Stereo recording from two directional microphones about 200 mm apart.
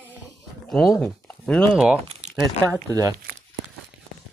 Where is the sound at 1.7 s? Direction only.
5° right (ahead or behind).